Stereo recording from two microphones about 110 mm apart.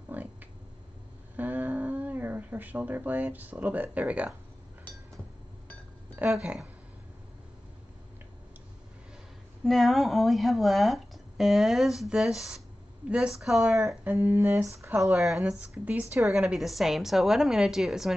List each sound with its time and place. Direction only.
0.1 s a sound: 15° right (ahead or behind)
1.3 s a sound: 15° right (ahead or behind)
6.3 s a woman's voice: 5° right (ahead or behind)
9.7 s a woman's voice: centre (ahead or behind)
14.0 s speech: 20° right (ahead or behind)
15.2 s speech: 5° right (ahead or behind)
15.8 s a woman's voice: 15° right (ahead or behind)
16.3 s speech: 5° right (ahead or behind)